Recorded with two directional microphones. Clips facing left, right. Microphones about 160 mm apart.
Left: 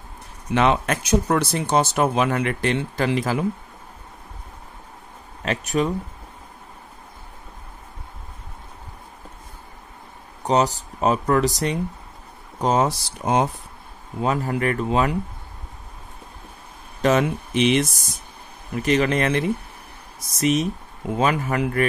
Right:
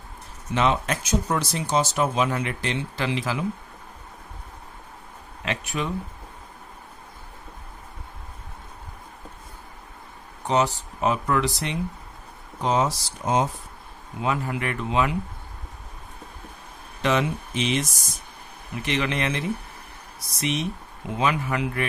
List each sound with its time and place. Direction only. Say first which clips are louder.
0.5 s speech: left 4 dB; 60° left (ahead or behind)
5.4 s speech: left 6 dB; 40° left (ahead or behind)
10.4 s speech: left 3 dB; 40° left (ahead or behind); by 13.5 s 60° left (ahead or behind)
14.2 s speech: left 4 dB; 40° left (ahead or behind)
17.0 s speech: left 4 dB; 45° left (ahead or behind)
17.6 s speech: left 7 dB; 65° left (ahead or behind)
18.7 s speech: left 7 dB; 40° left (ahead or behind)